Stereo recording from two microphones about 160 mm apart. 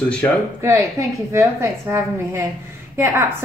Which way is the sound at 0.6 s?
20° right (ahead or behind).